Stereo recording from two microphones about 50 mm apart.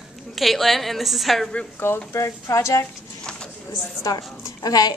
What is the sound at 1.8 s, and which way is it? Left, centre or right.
Speech, left.